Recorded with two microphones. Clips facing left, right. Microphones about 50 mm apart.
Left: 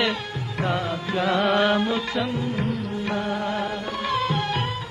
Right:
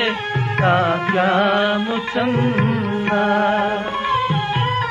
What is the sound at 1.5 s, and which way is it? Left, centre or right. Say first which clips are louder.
Music: right 2 dB; centre.